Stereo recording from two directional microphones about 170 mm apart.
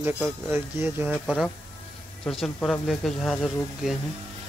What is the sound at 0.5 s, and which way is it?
Speech, 15° right (ahead or behind).